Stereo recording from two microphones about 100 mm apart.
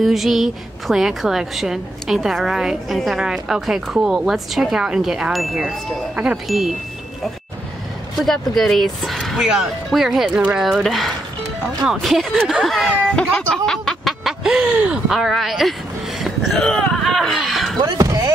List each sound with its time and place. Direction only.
0.0 s a woman's voice: centre (ahead or behind)
8.2 s a woman's voice: centre (ahead or behind)
13.7 s snicker: 5° left (ahead or behind)
15.1 s a woman's voice: centre (ahead or behind)
17.8 s speech: 35° right (ahead or behind)